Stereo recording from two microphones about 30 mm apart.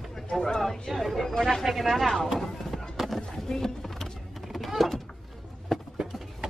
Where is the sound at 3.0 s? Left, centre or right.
Centre.